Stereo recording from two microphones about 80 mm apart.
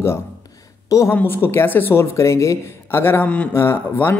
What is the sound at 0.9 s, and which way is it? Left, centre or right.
Speech, left.